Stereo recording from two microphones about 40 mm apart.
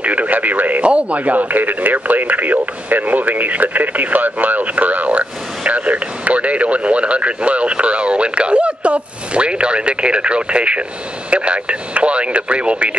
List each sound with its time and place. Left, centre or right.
0.0 s radio: right
0.8 s speech: right